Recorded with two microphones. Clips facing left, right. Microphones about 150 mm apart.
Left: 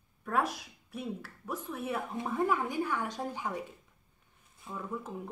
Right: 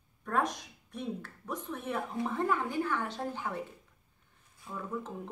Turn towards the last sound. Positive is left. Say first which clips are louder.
# even
turn(degrees=10)  # may be behind; listen again after turning